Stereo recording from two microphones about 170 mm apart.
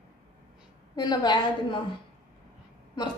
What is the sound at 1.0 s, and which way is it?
Speech, 25° left (ahead or behind).